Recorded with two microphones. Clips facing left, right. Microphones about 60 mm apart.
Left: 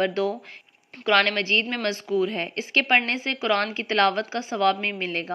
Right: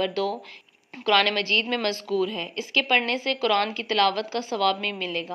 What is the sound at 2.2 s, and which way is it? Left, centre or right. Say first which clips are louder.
A woman's voice: left 3 dB; left.